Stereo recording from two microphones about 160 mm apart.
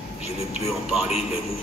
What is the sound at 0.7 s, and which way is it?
Speech, centre (ahead or behind).